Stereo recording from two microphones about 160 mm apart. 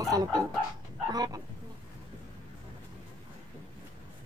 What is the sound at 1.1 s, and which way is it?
Speech, 25° right (ahead or behind).